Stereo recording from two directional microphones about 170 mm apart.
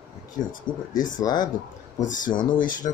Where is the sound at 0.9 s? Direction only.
50° left (ahead or behind).